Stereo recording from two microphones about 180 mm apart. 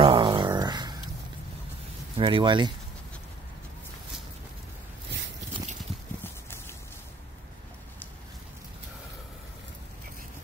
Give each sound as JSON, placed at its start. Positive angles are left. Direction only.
{"t": 0.0, "sound": "dog", "side_deg": -25}
{"t": 2.1, "sound": "speech", "side_deg": -30}